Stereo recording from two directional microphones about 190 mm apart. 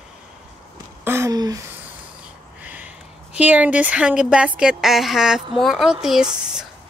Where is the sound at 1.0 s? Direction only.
15° right (ahead or behind).